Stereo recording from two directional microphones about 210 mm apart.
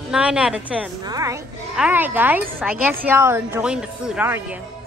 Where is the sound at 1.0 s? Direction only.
15° right (ahead or behind).